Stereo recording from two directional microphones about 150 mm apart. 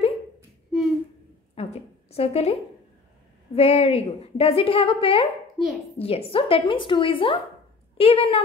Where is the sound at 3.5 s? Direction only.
40° left (ahead or behind).